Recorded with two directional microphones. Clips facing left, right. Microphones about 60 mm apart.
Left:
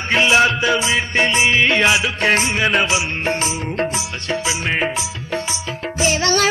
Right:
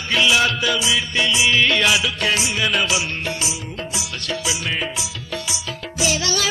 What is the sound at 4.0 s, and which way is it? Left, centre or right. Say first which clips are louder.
Music: left 4 dB; left.